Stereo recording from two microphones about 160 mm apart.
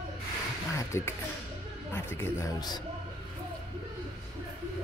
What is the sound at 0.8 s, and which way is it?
A man's voice, 15° left (ahead or behind).